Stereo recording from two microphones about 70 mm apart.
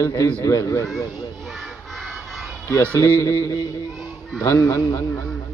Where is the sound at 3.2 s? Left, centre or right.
Left.